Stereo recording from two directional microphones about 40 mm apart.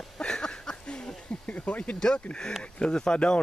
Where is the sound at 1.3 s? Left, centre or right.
Left.